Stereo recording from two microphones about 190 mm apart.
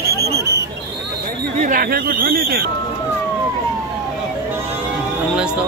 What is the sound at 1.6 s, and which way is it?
Speech, 45° right (ahead or behind).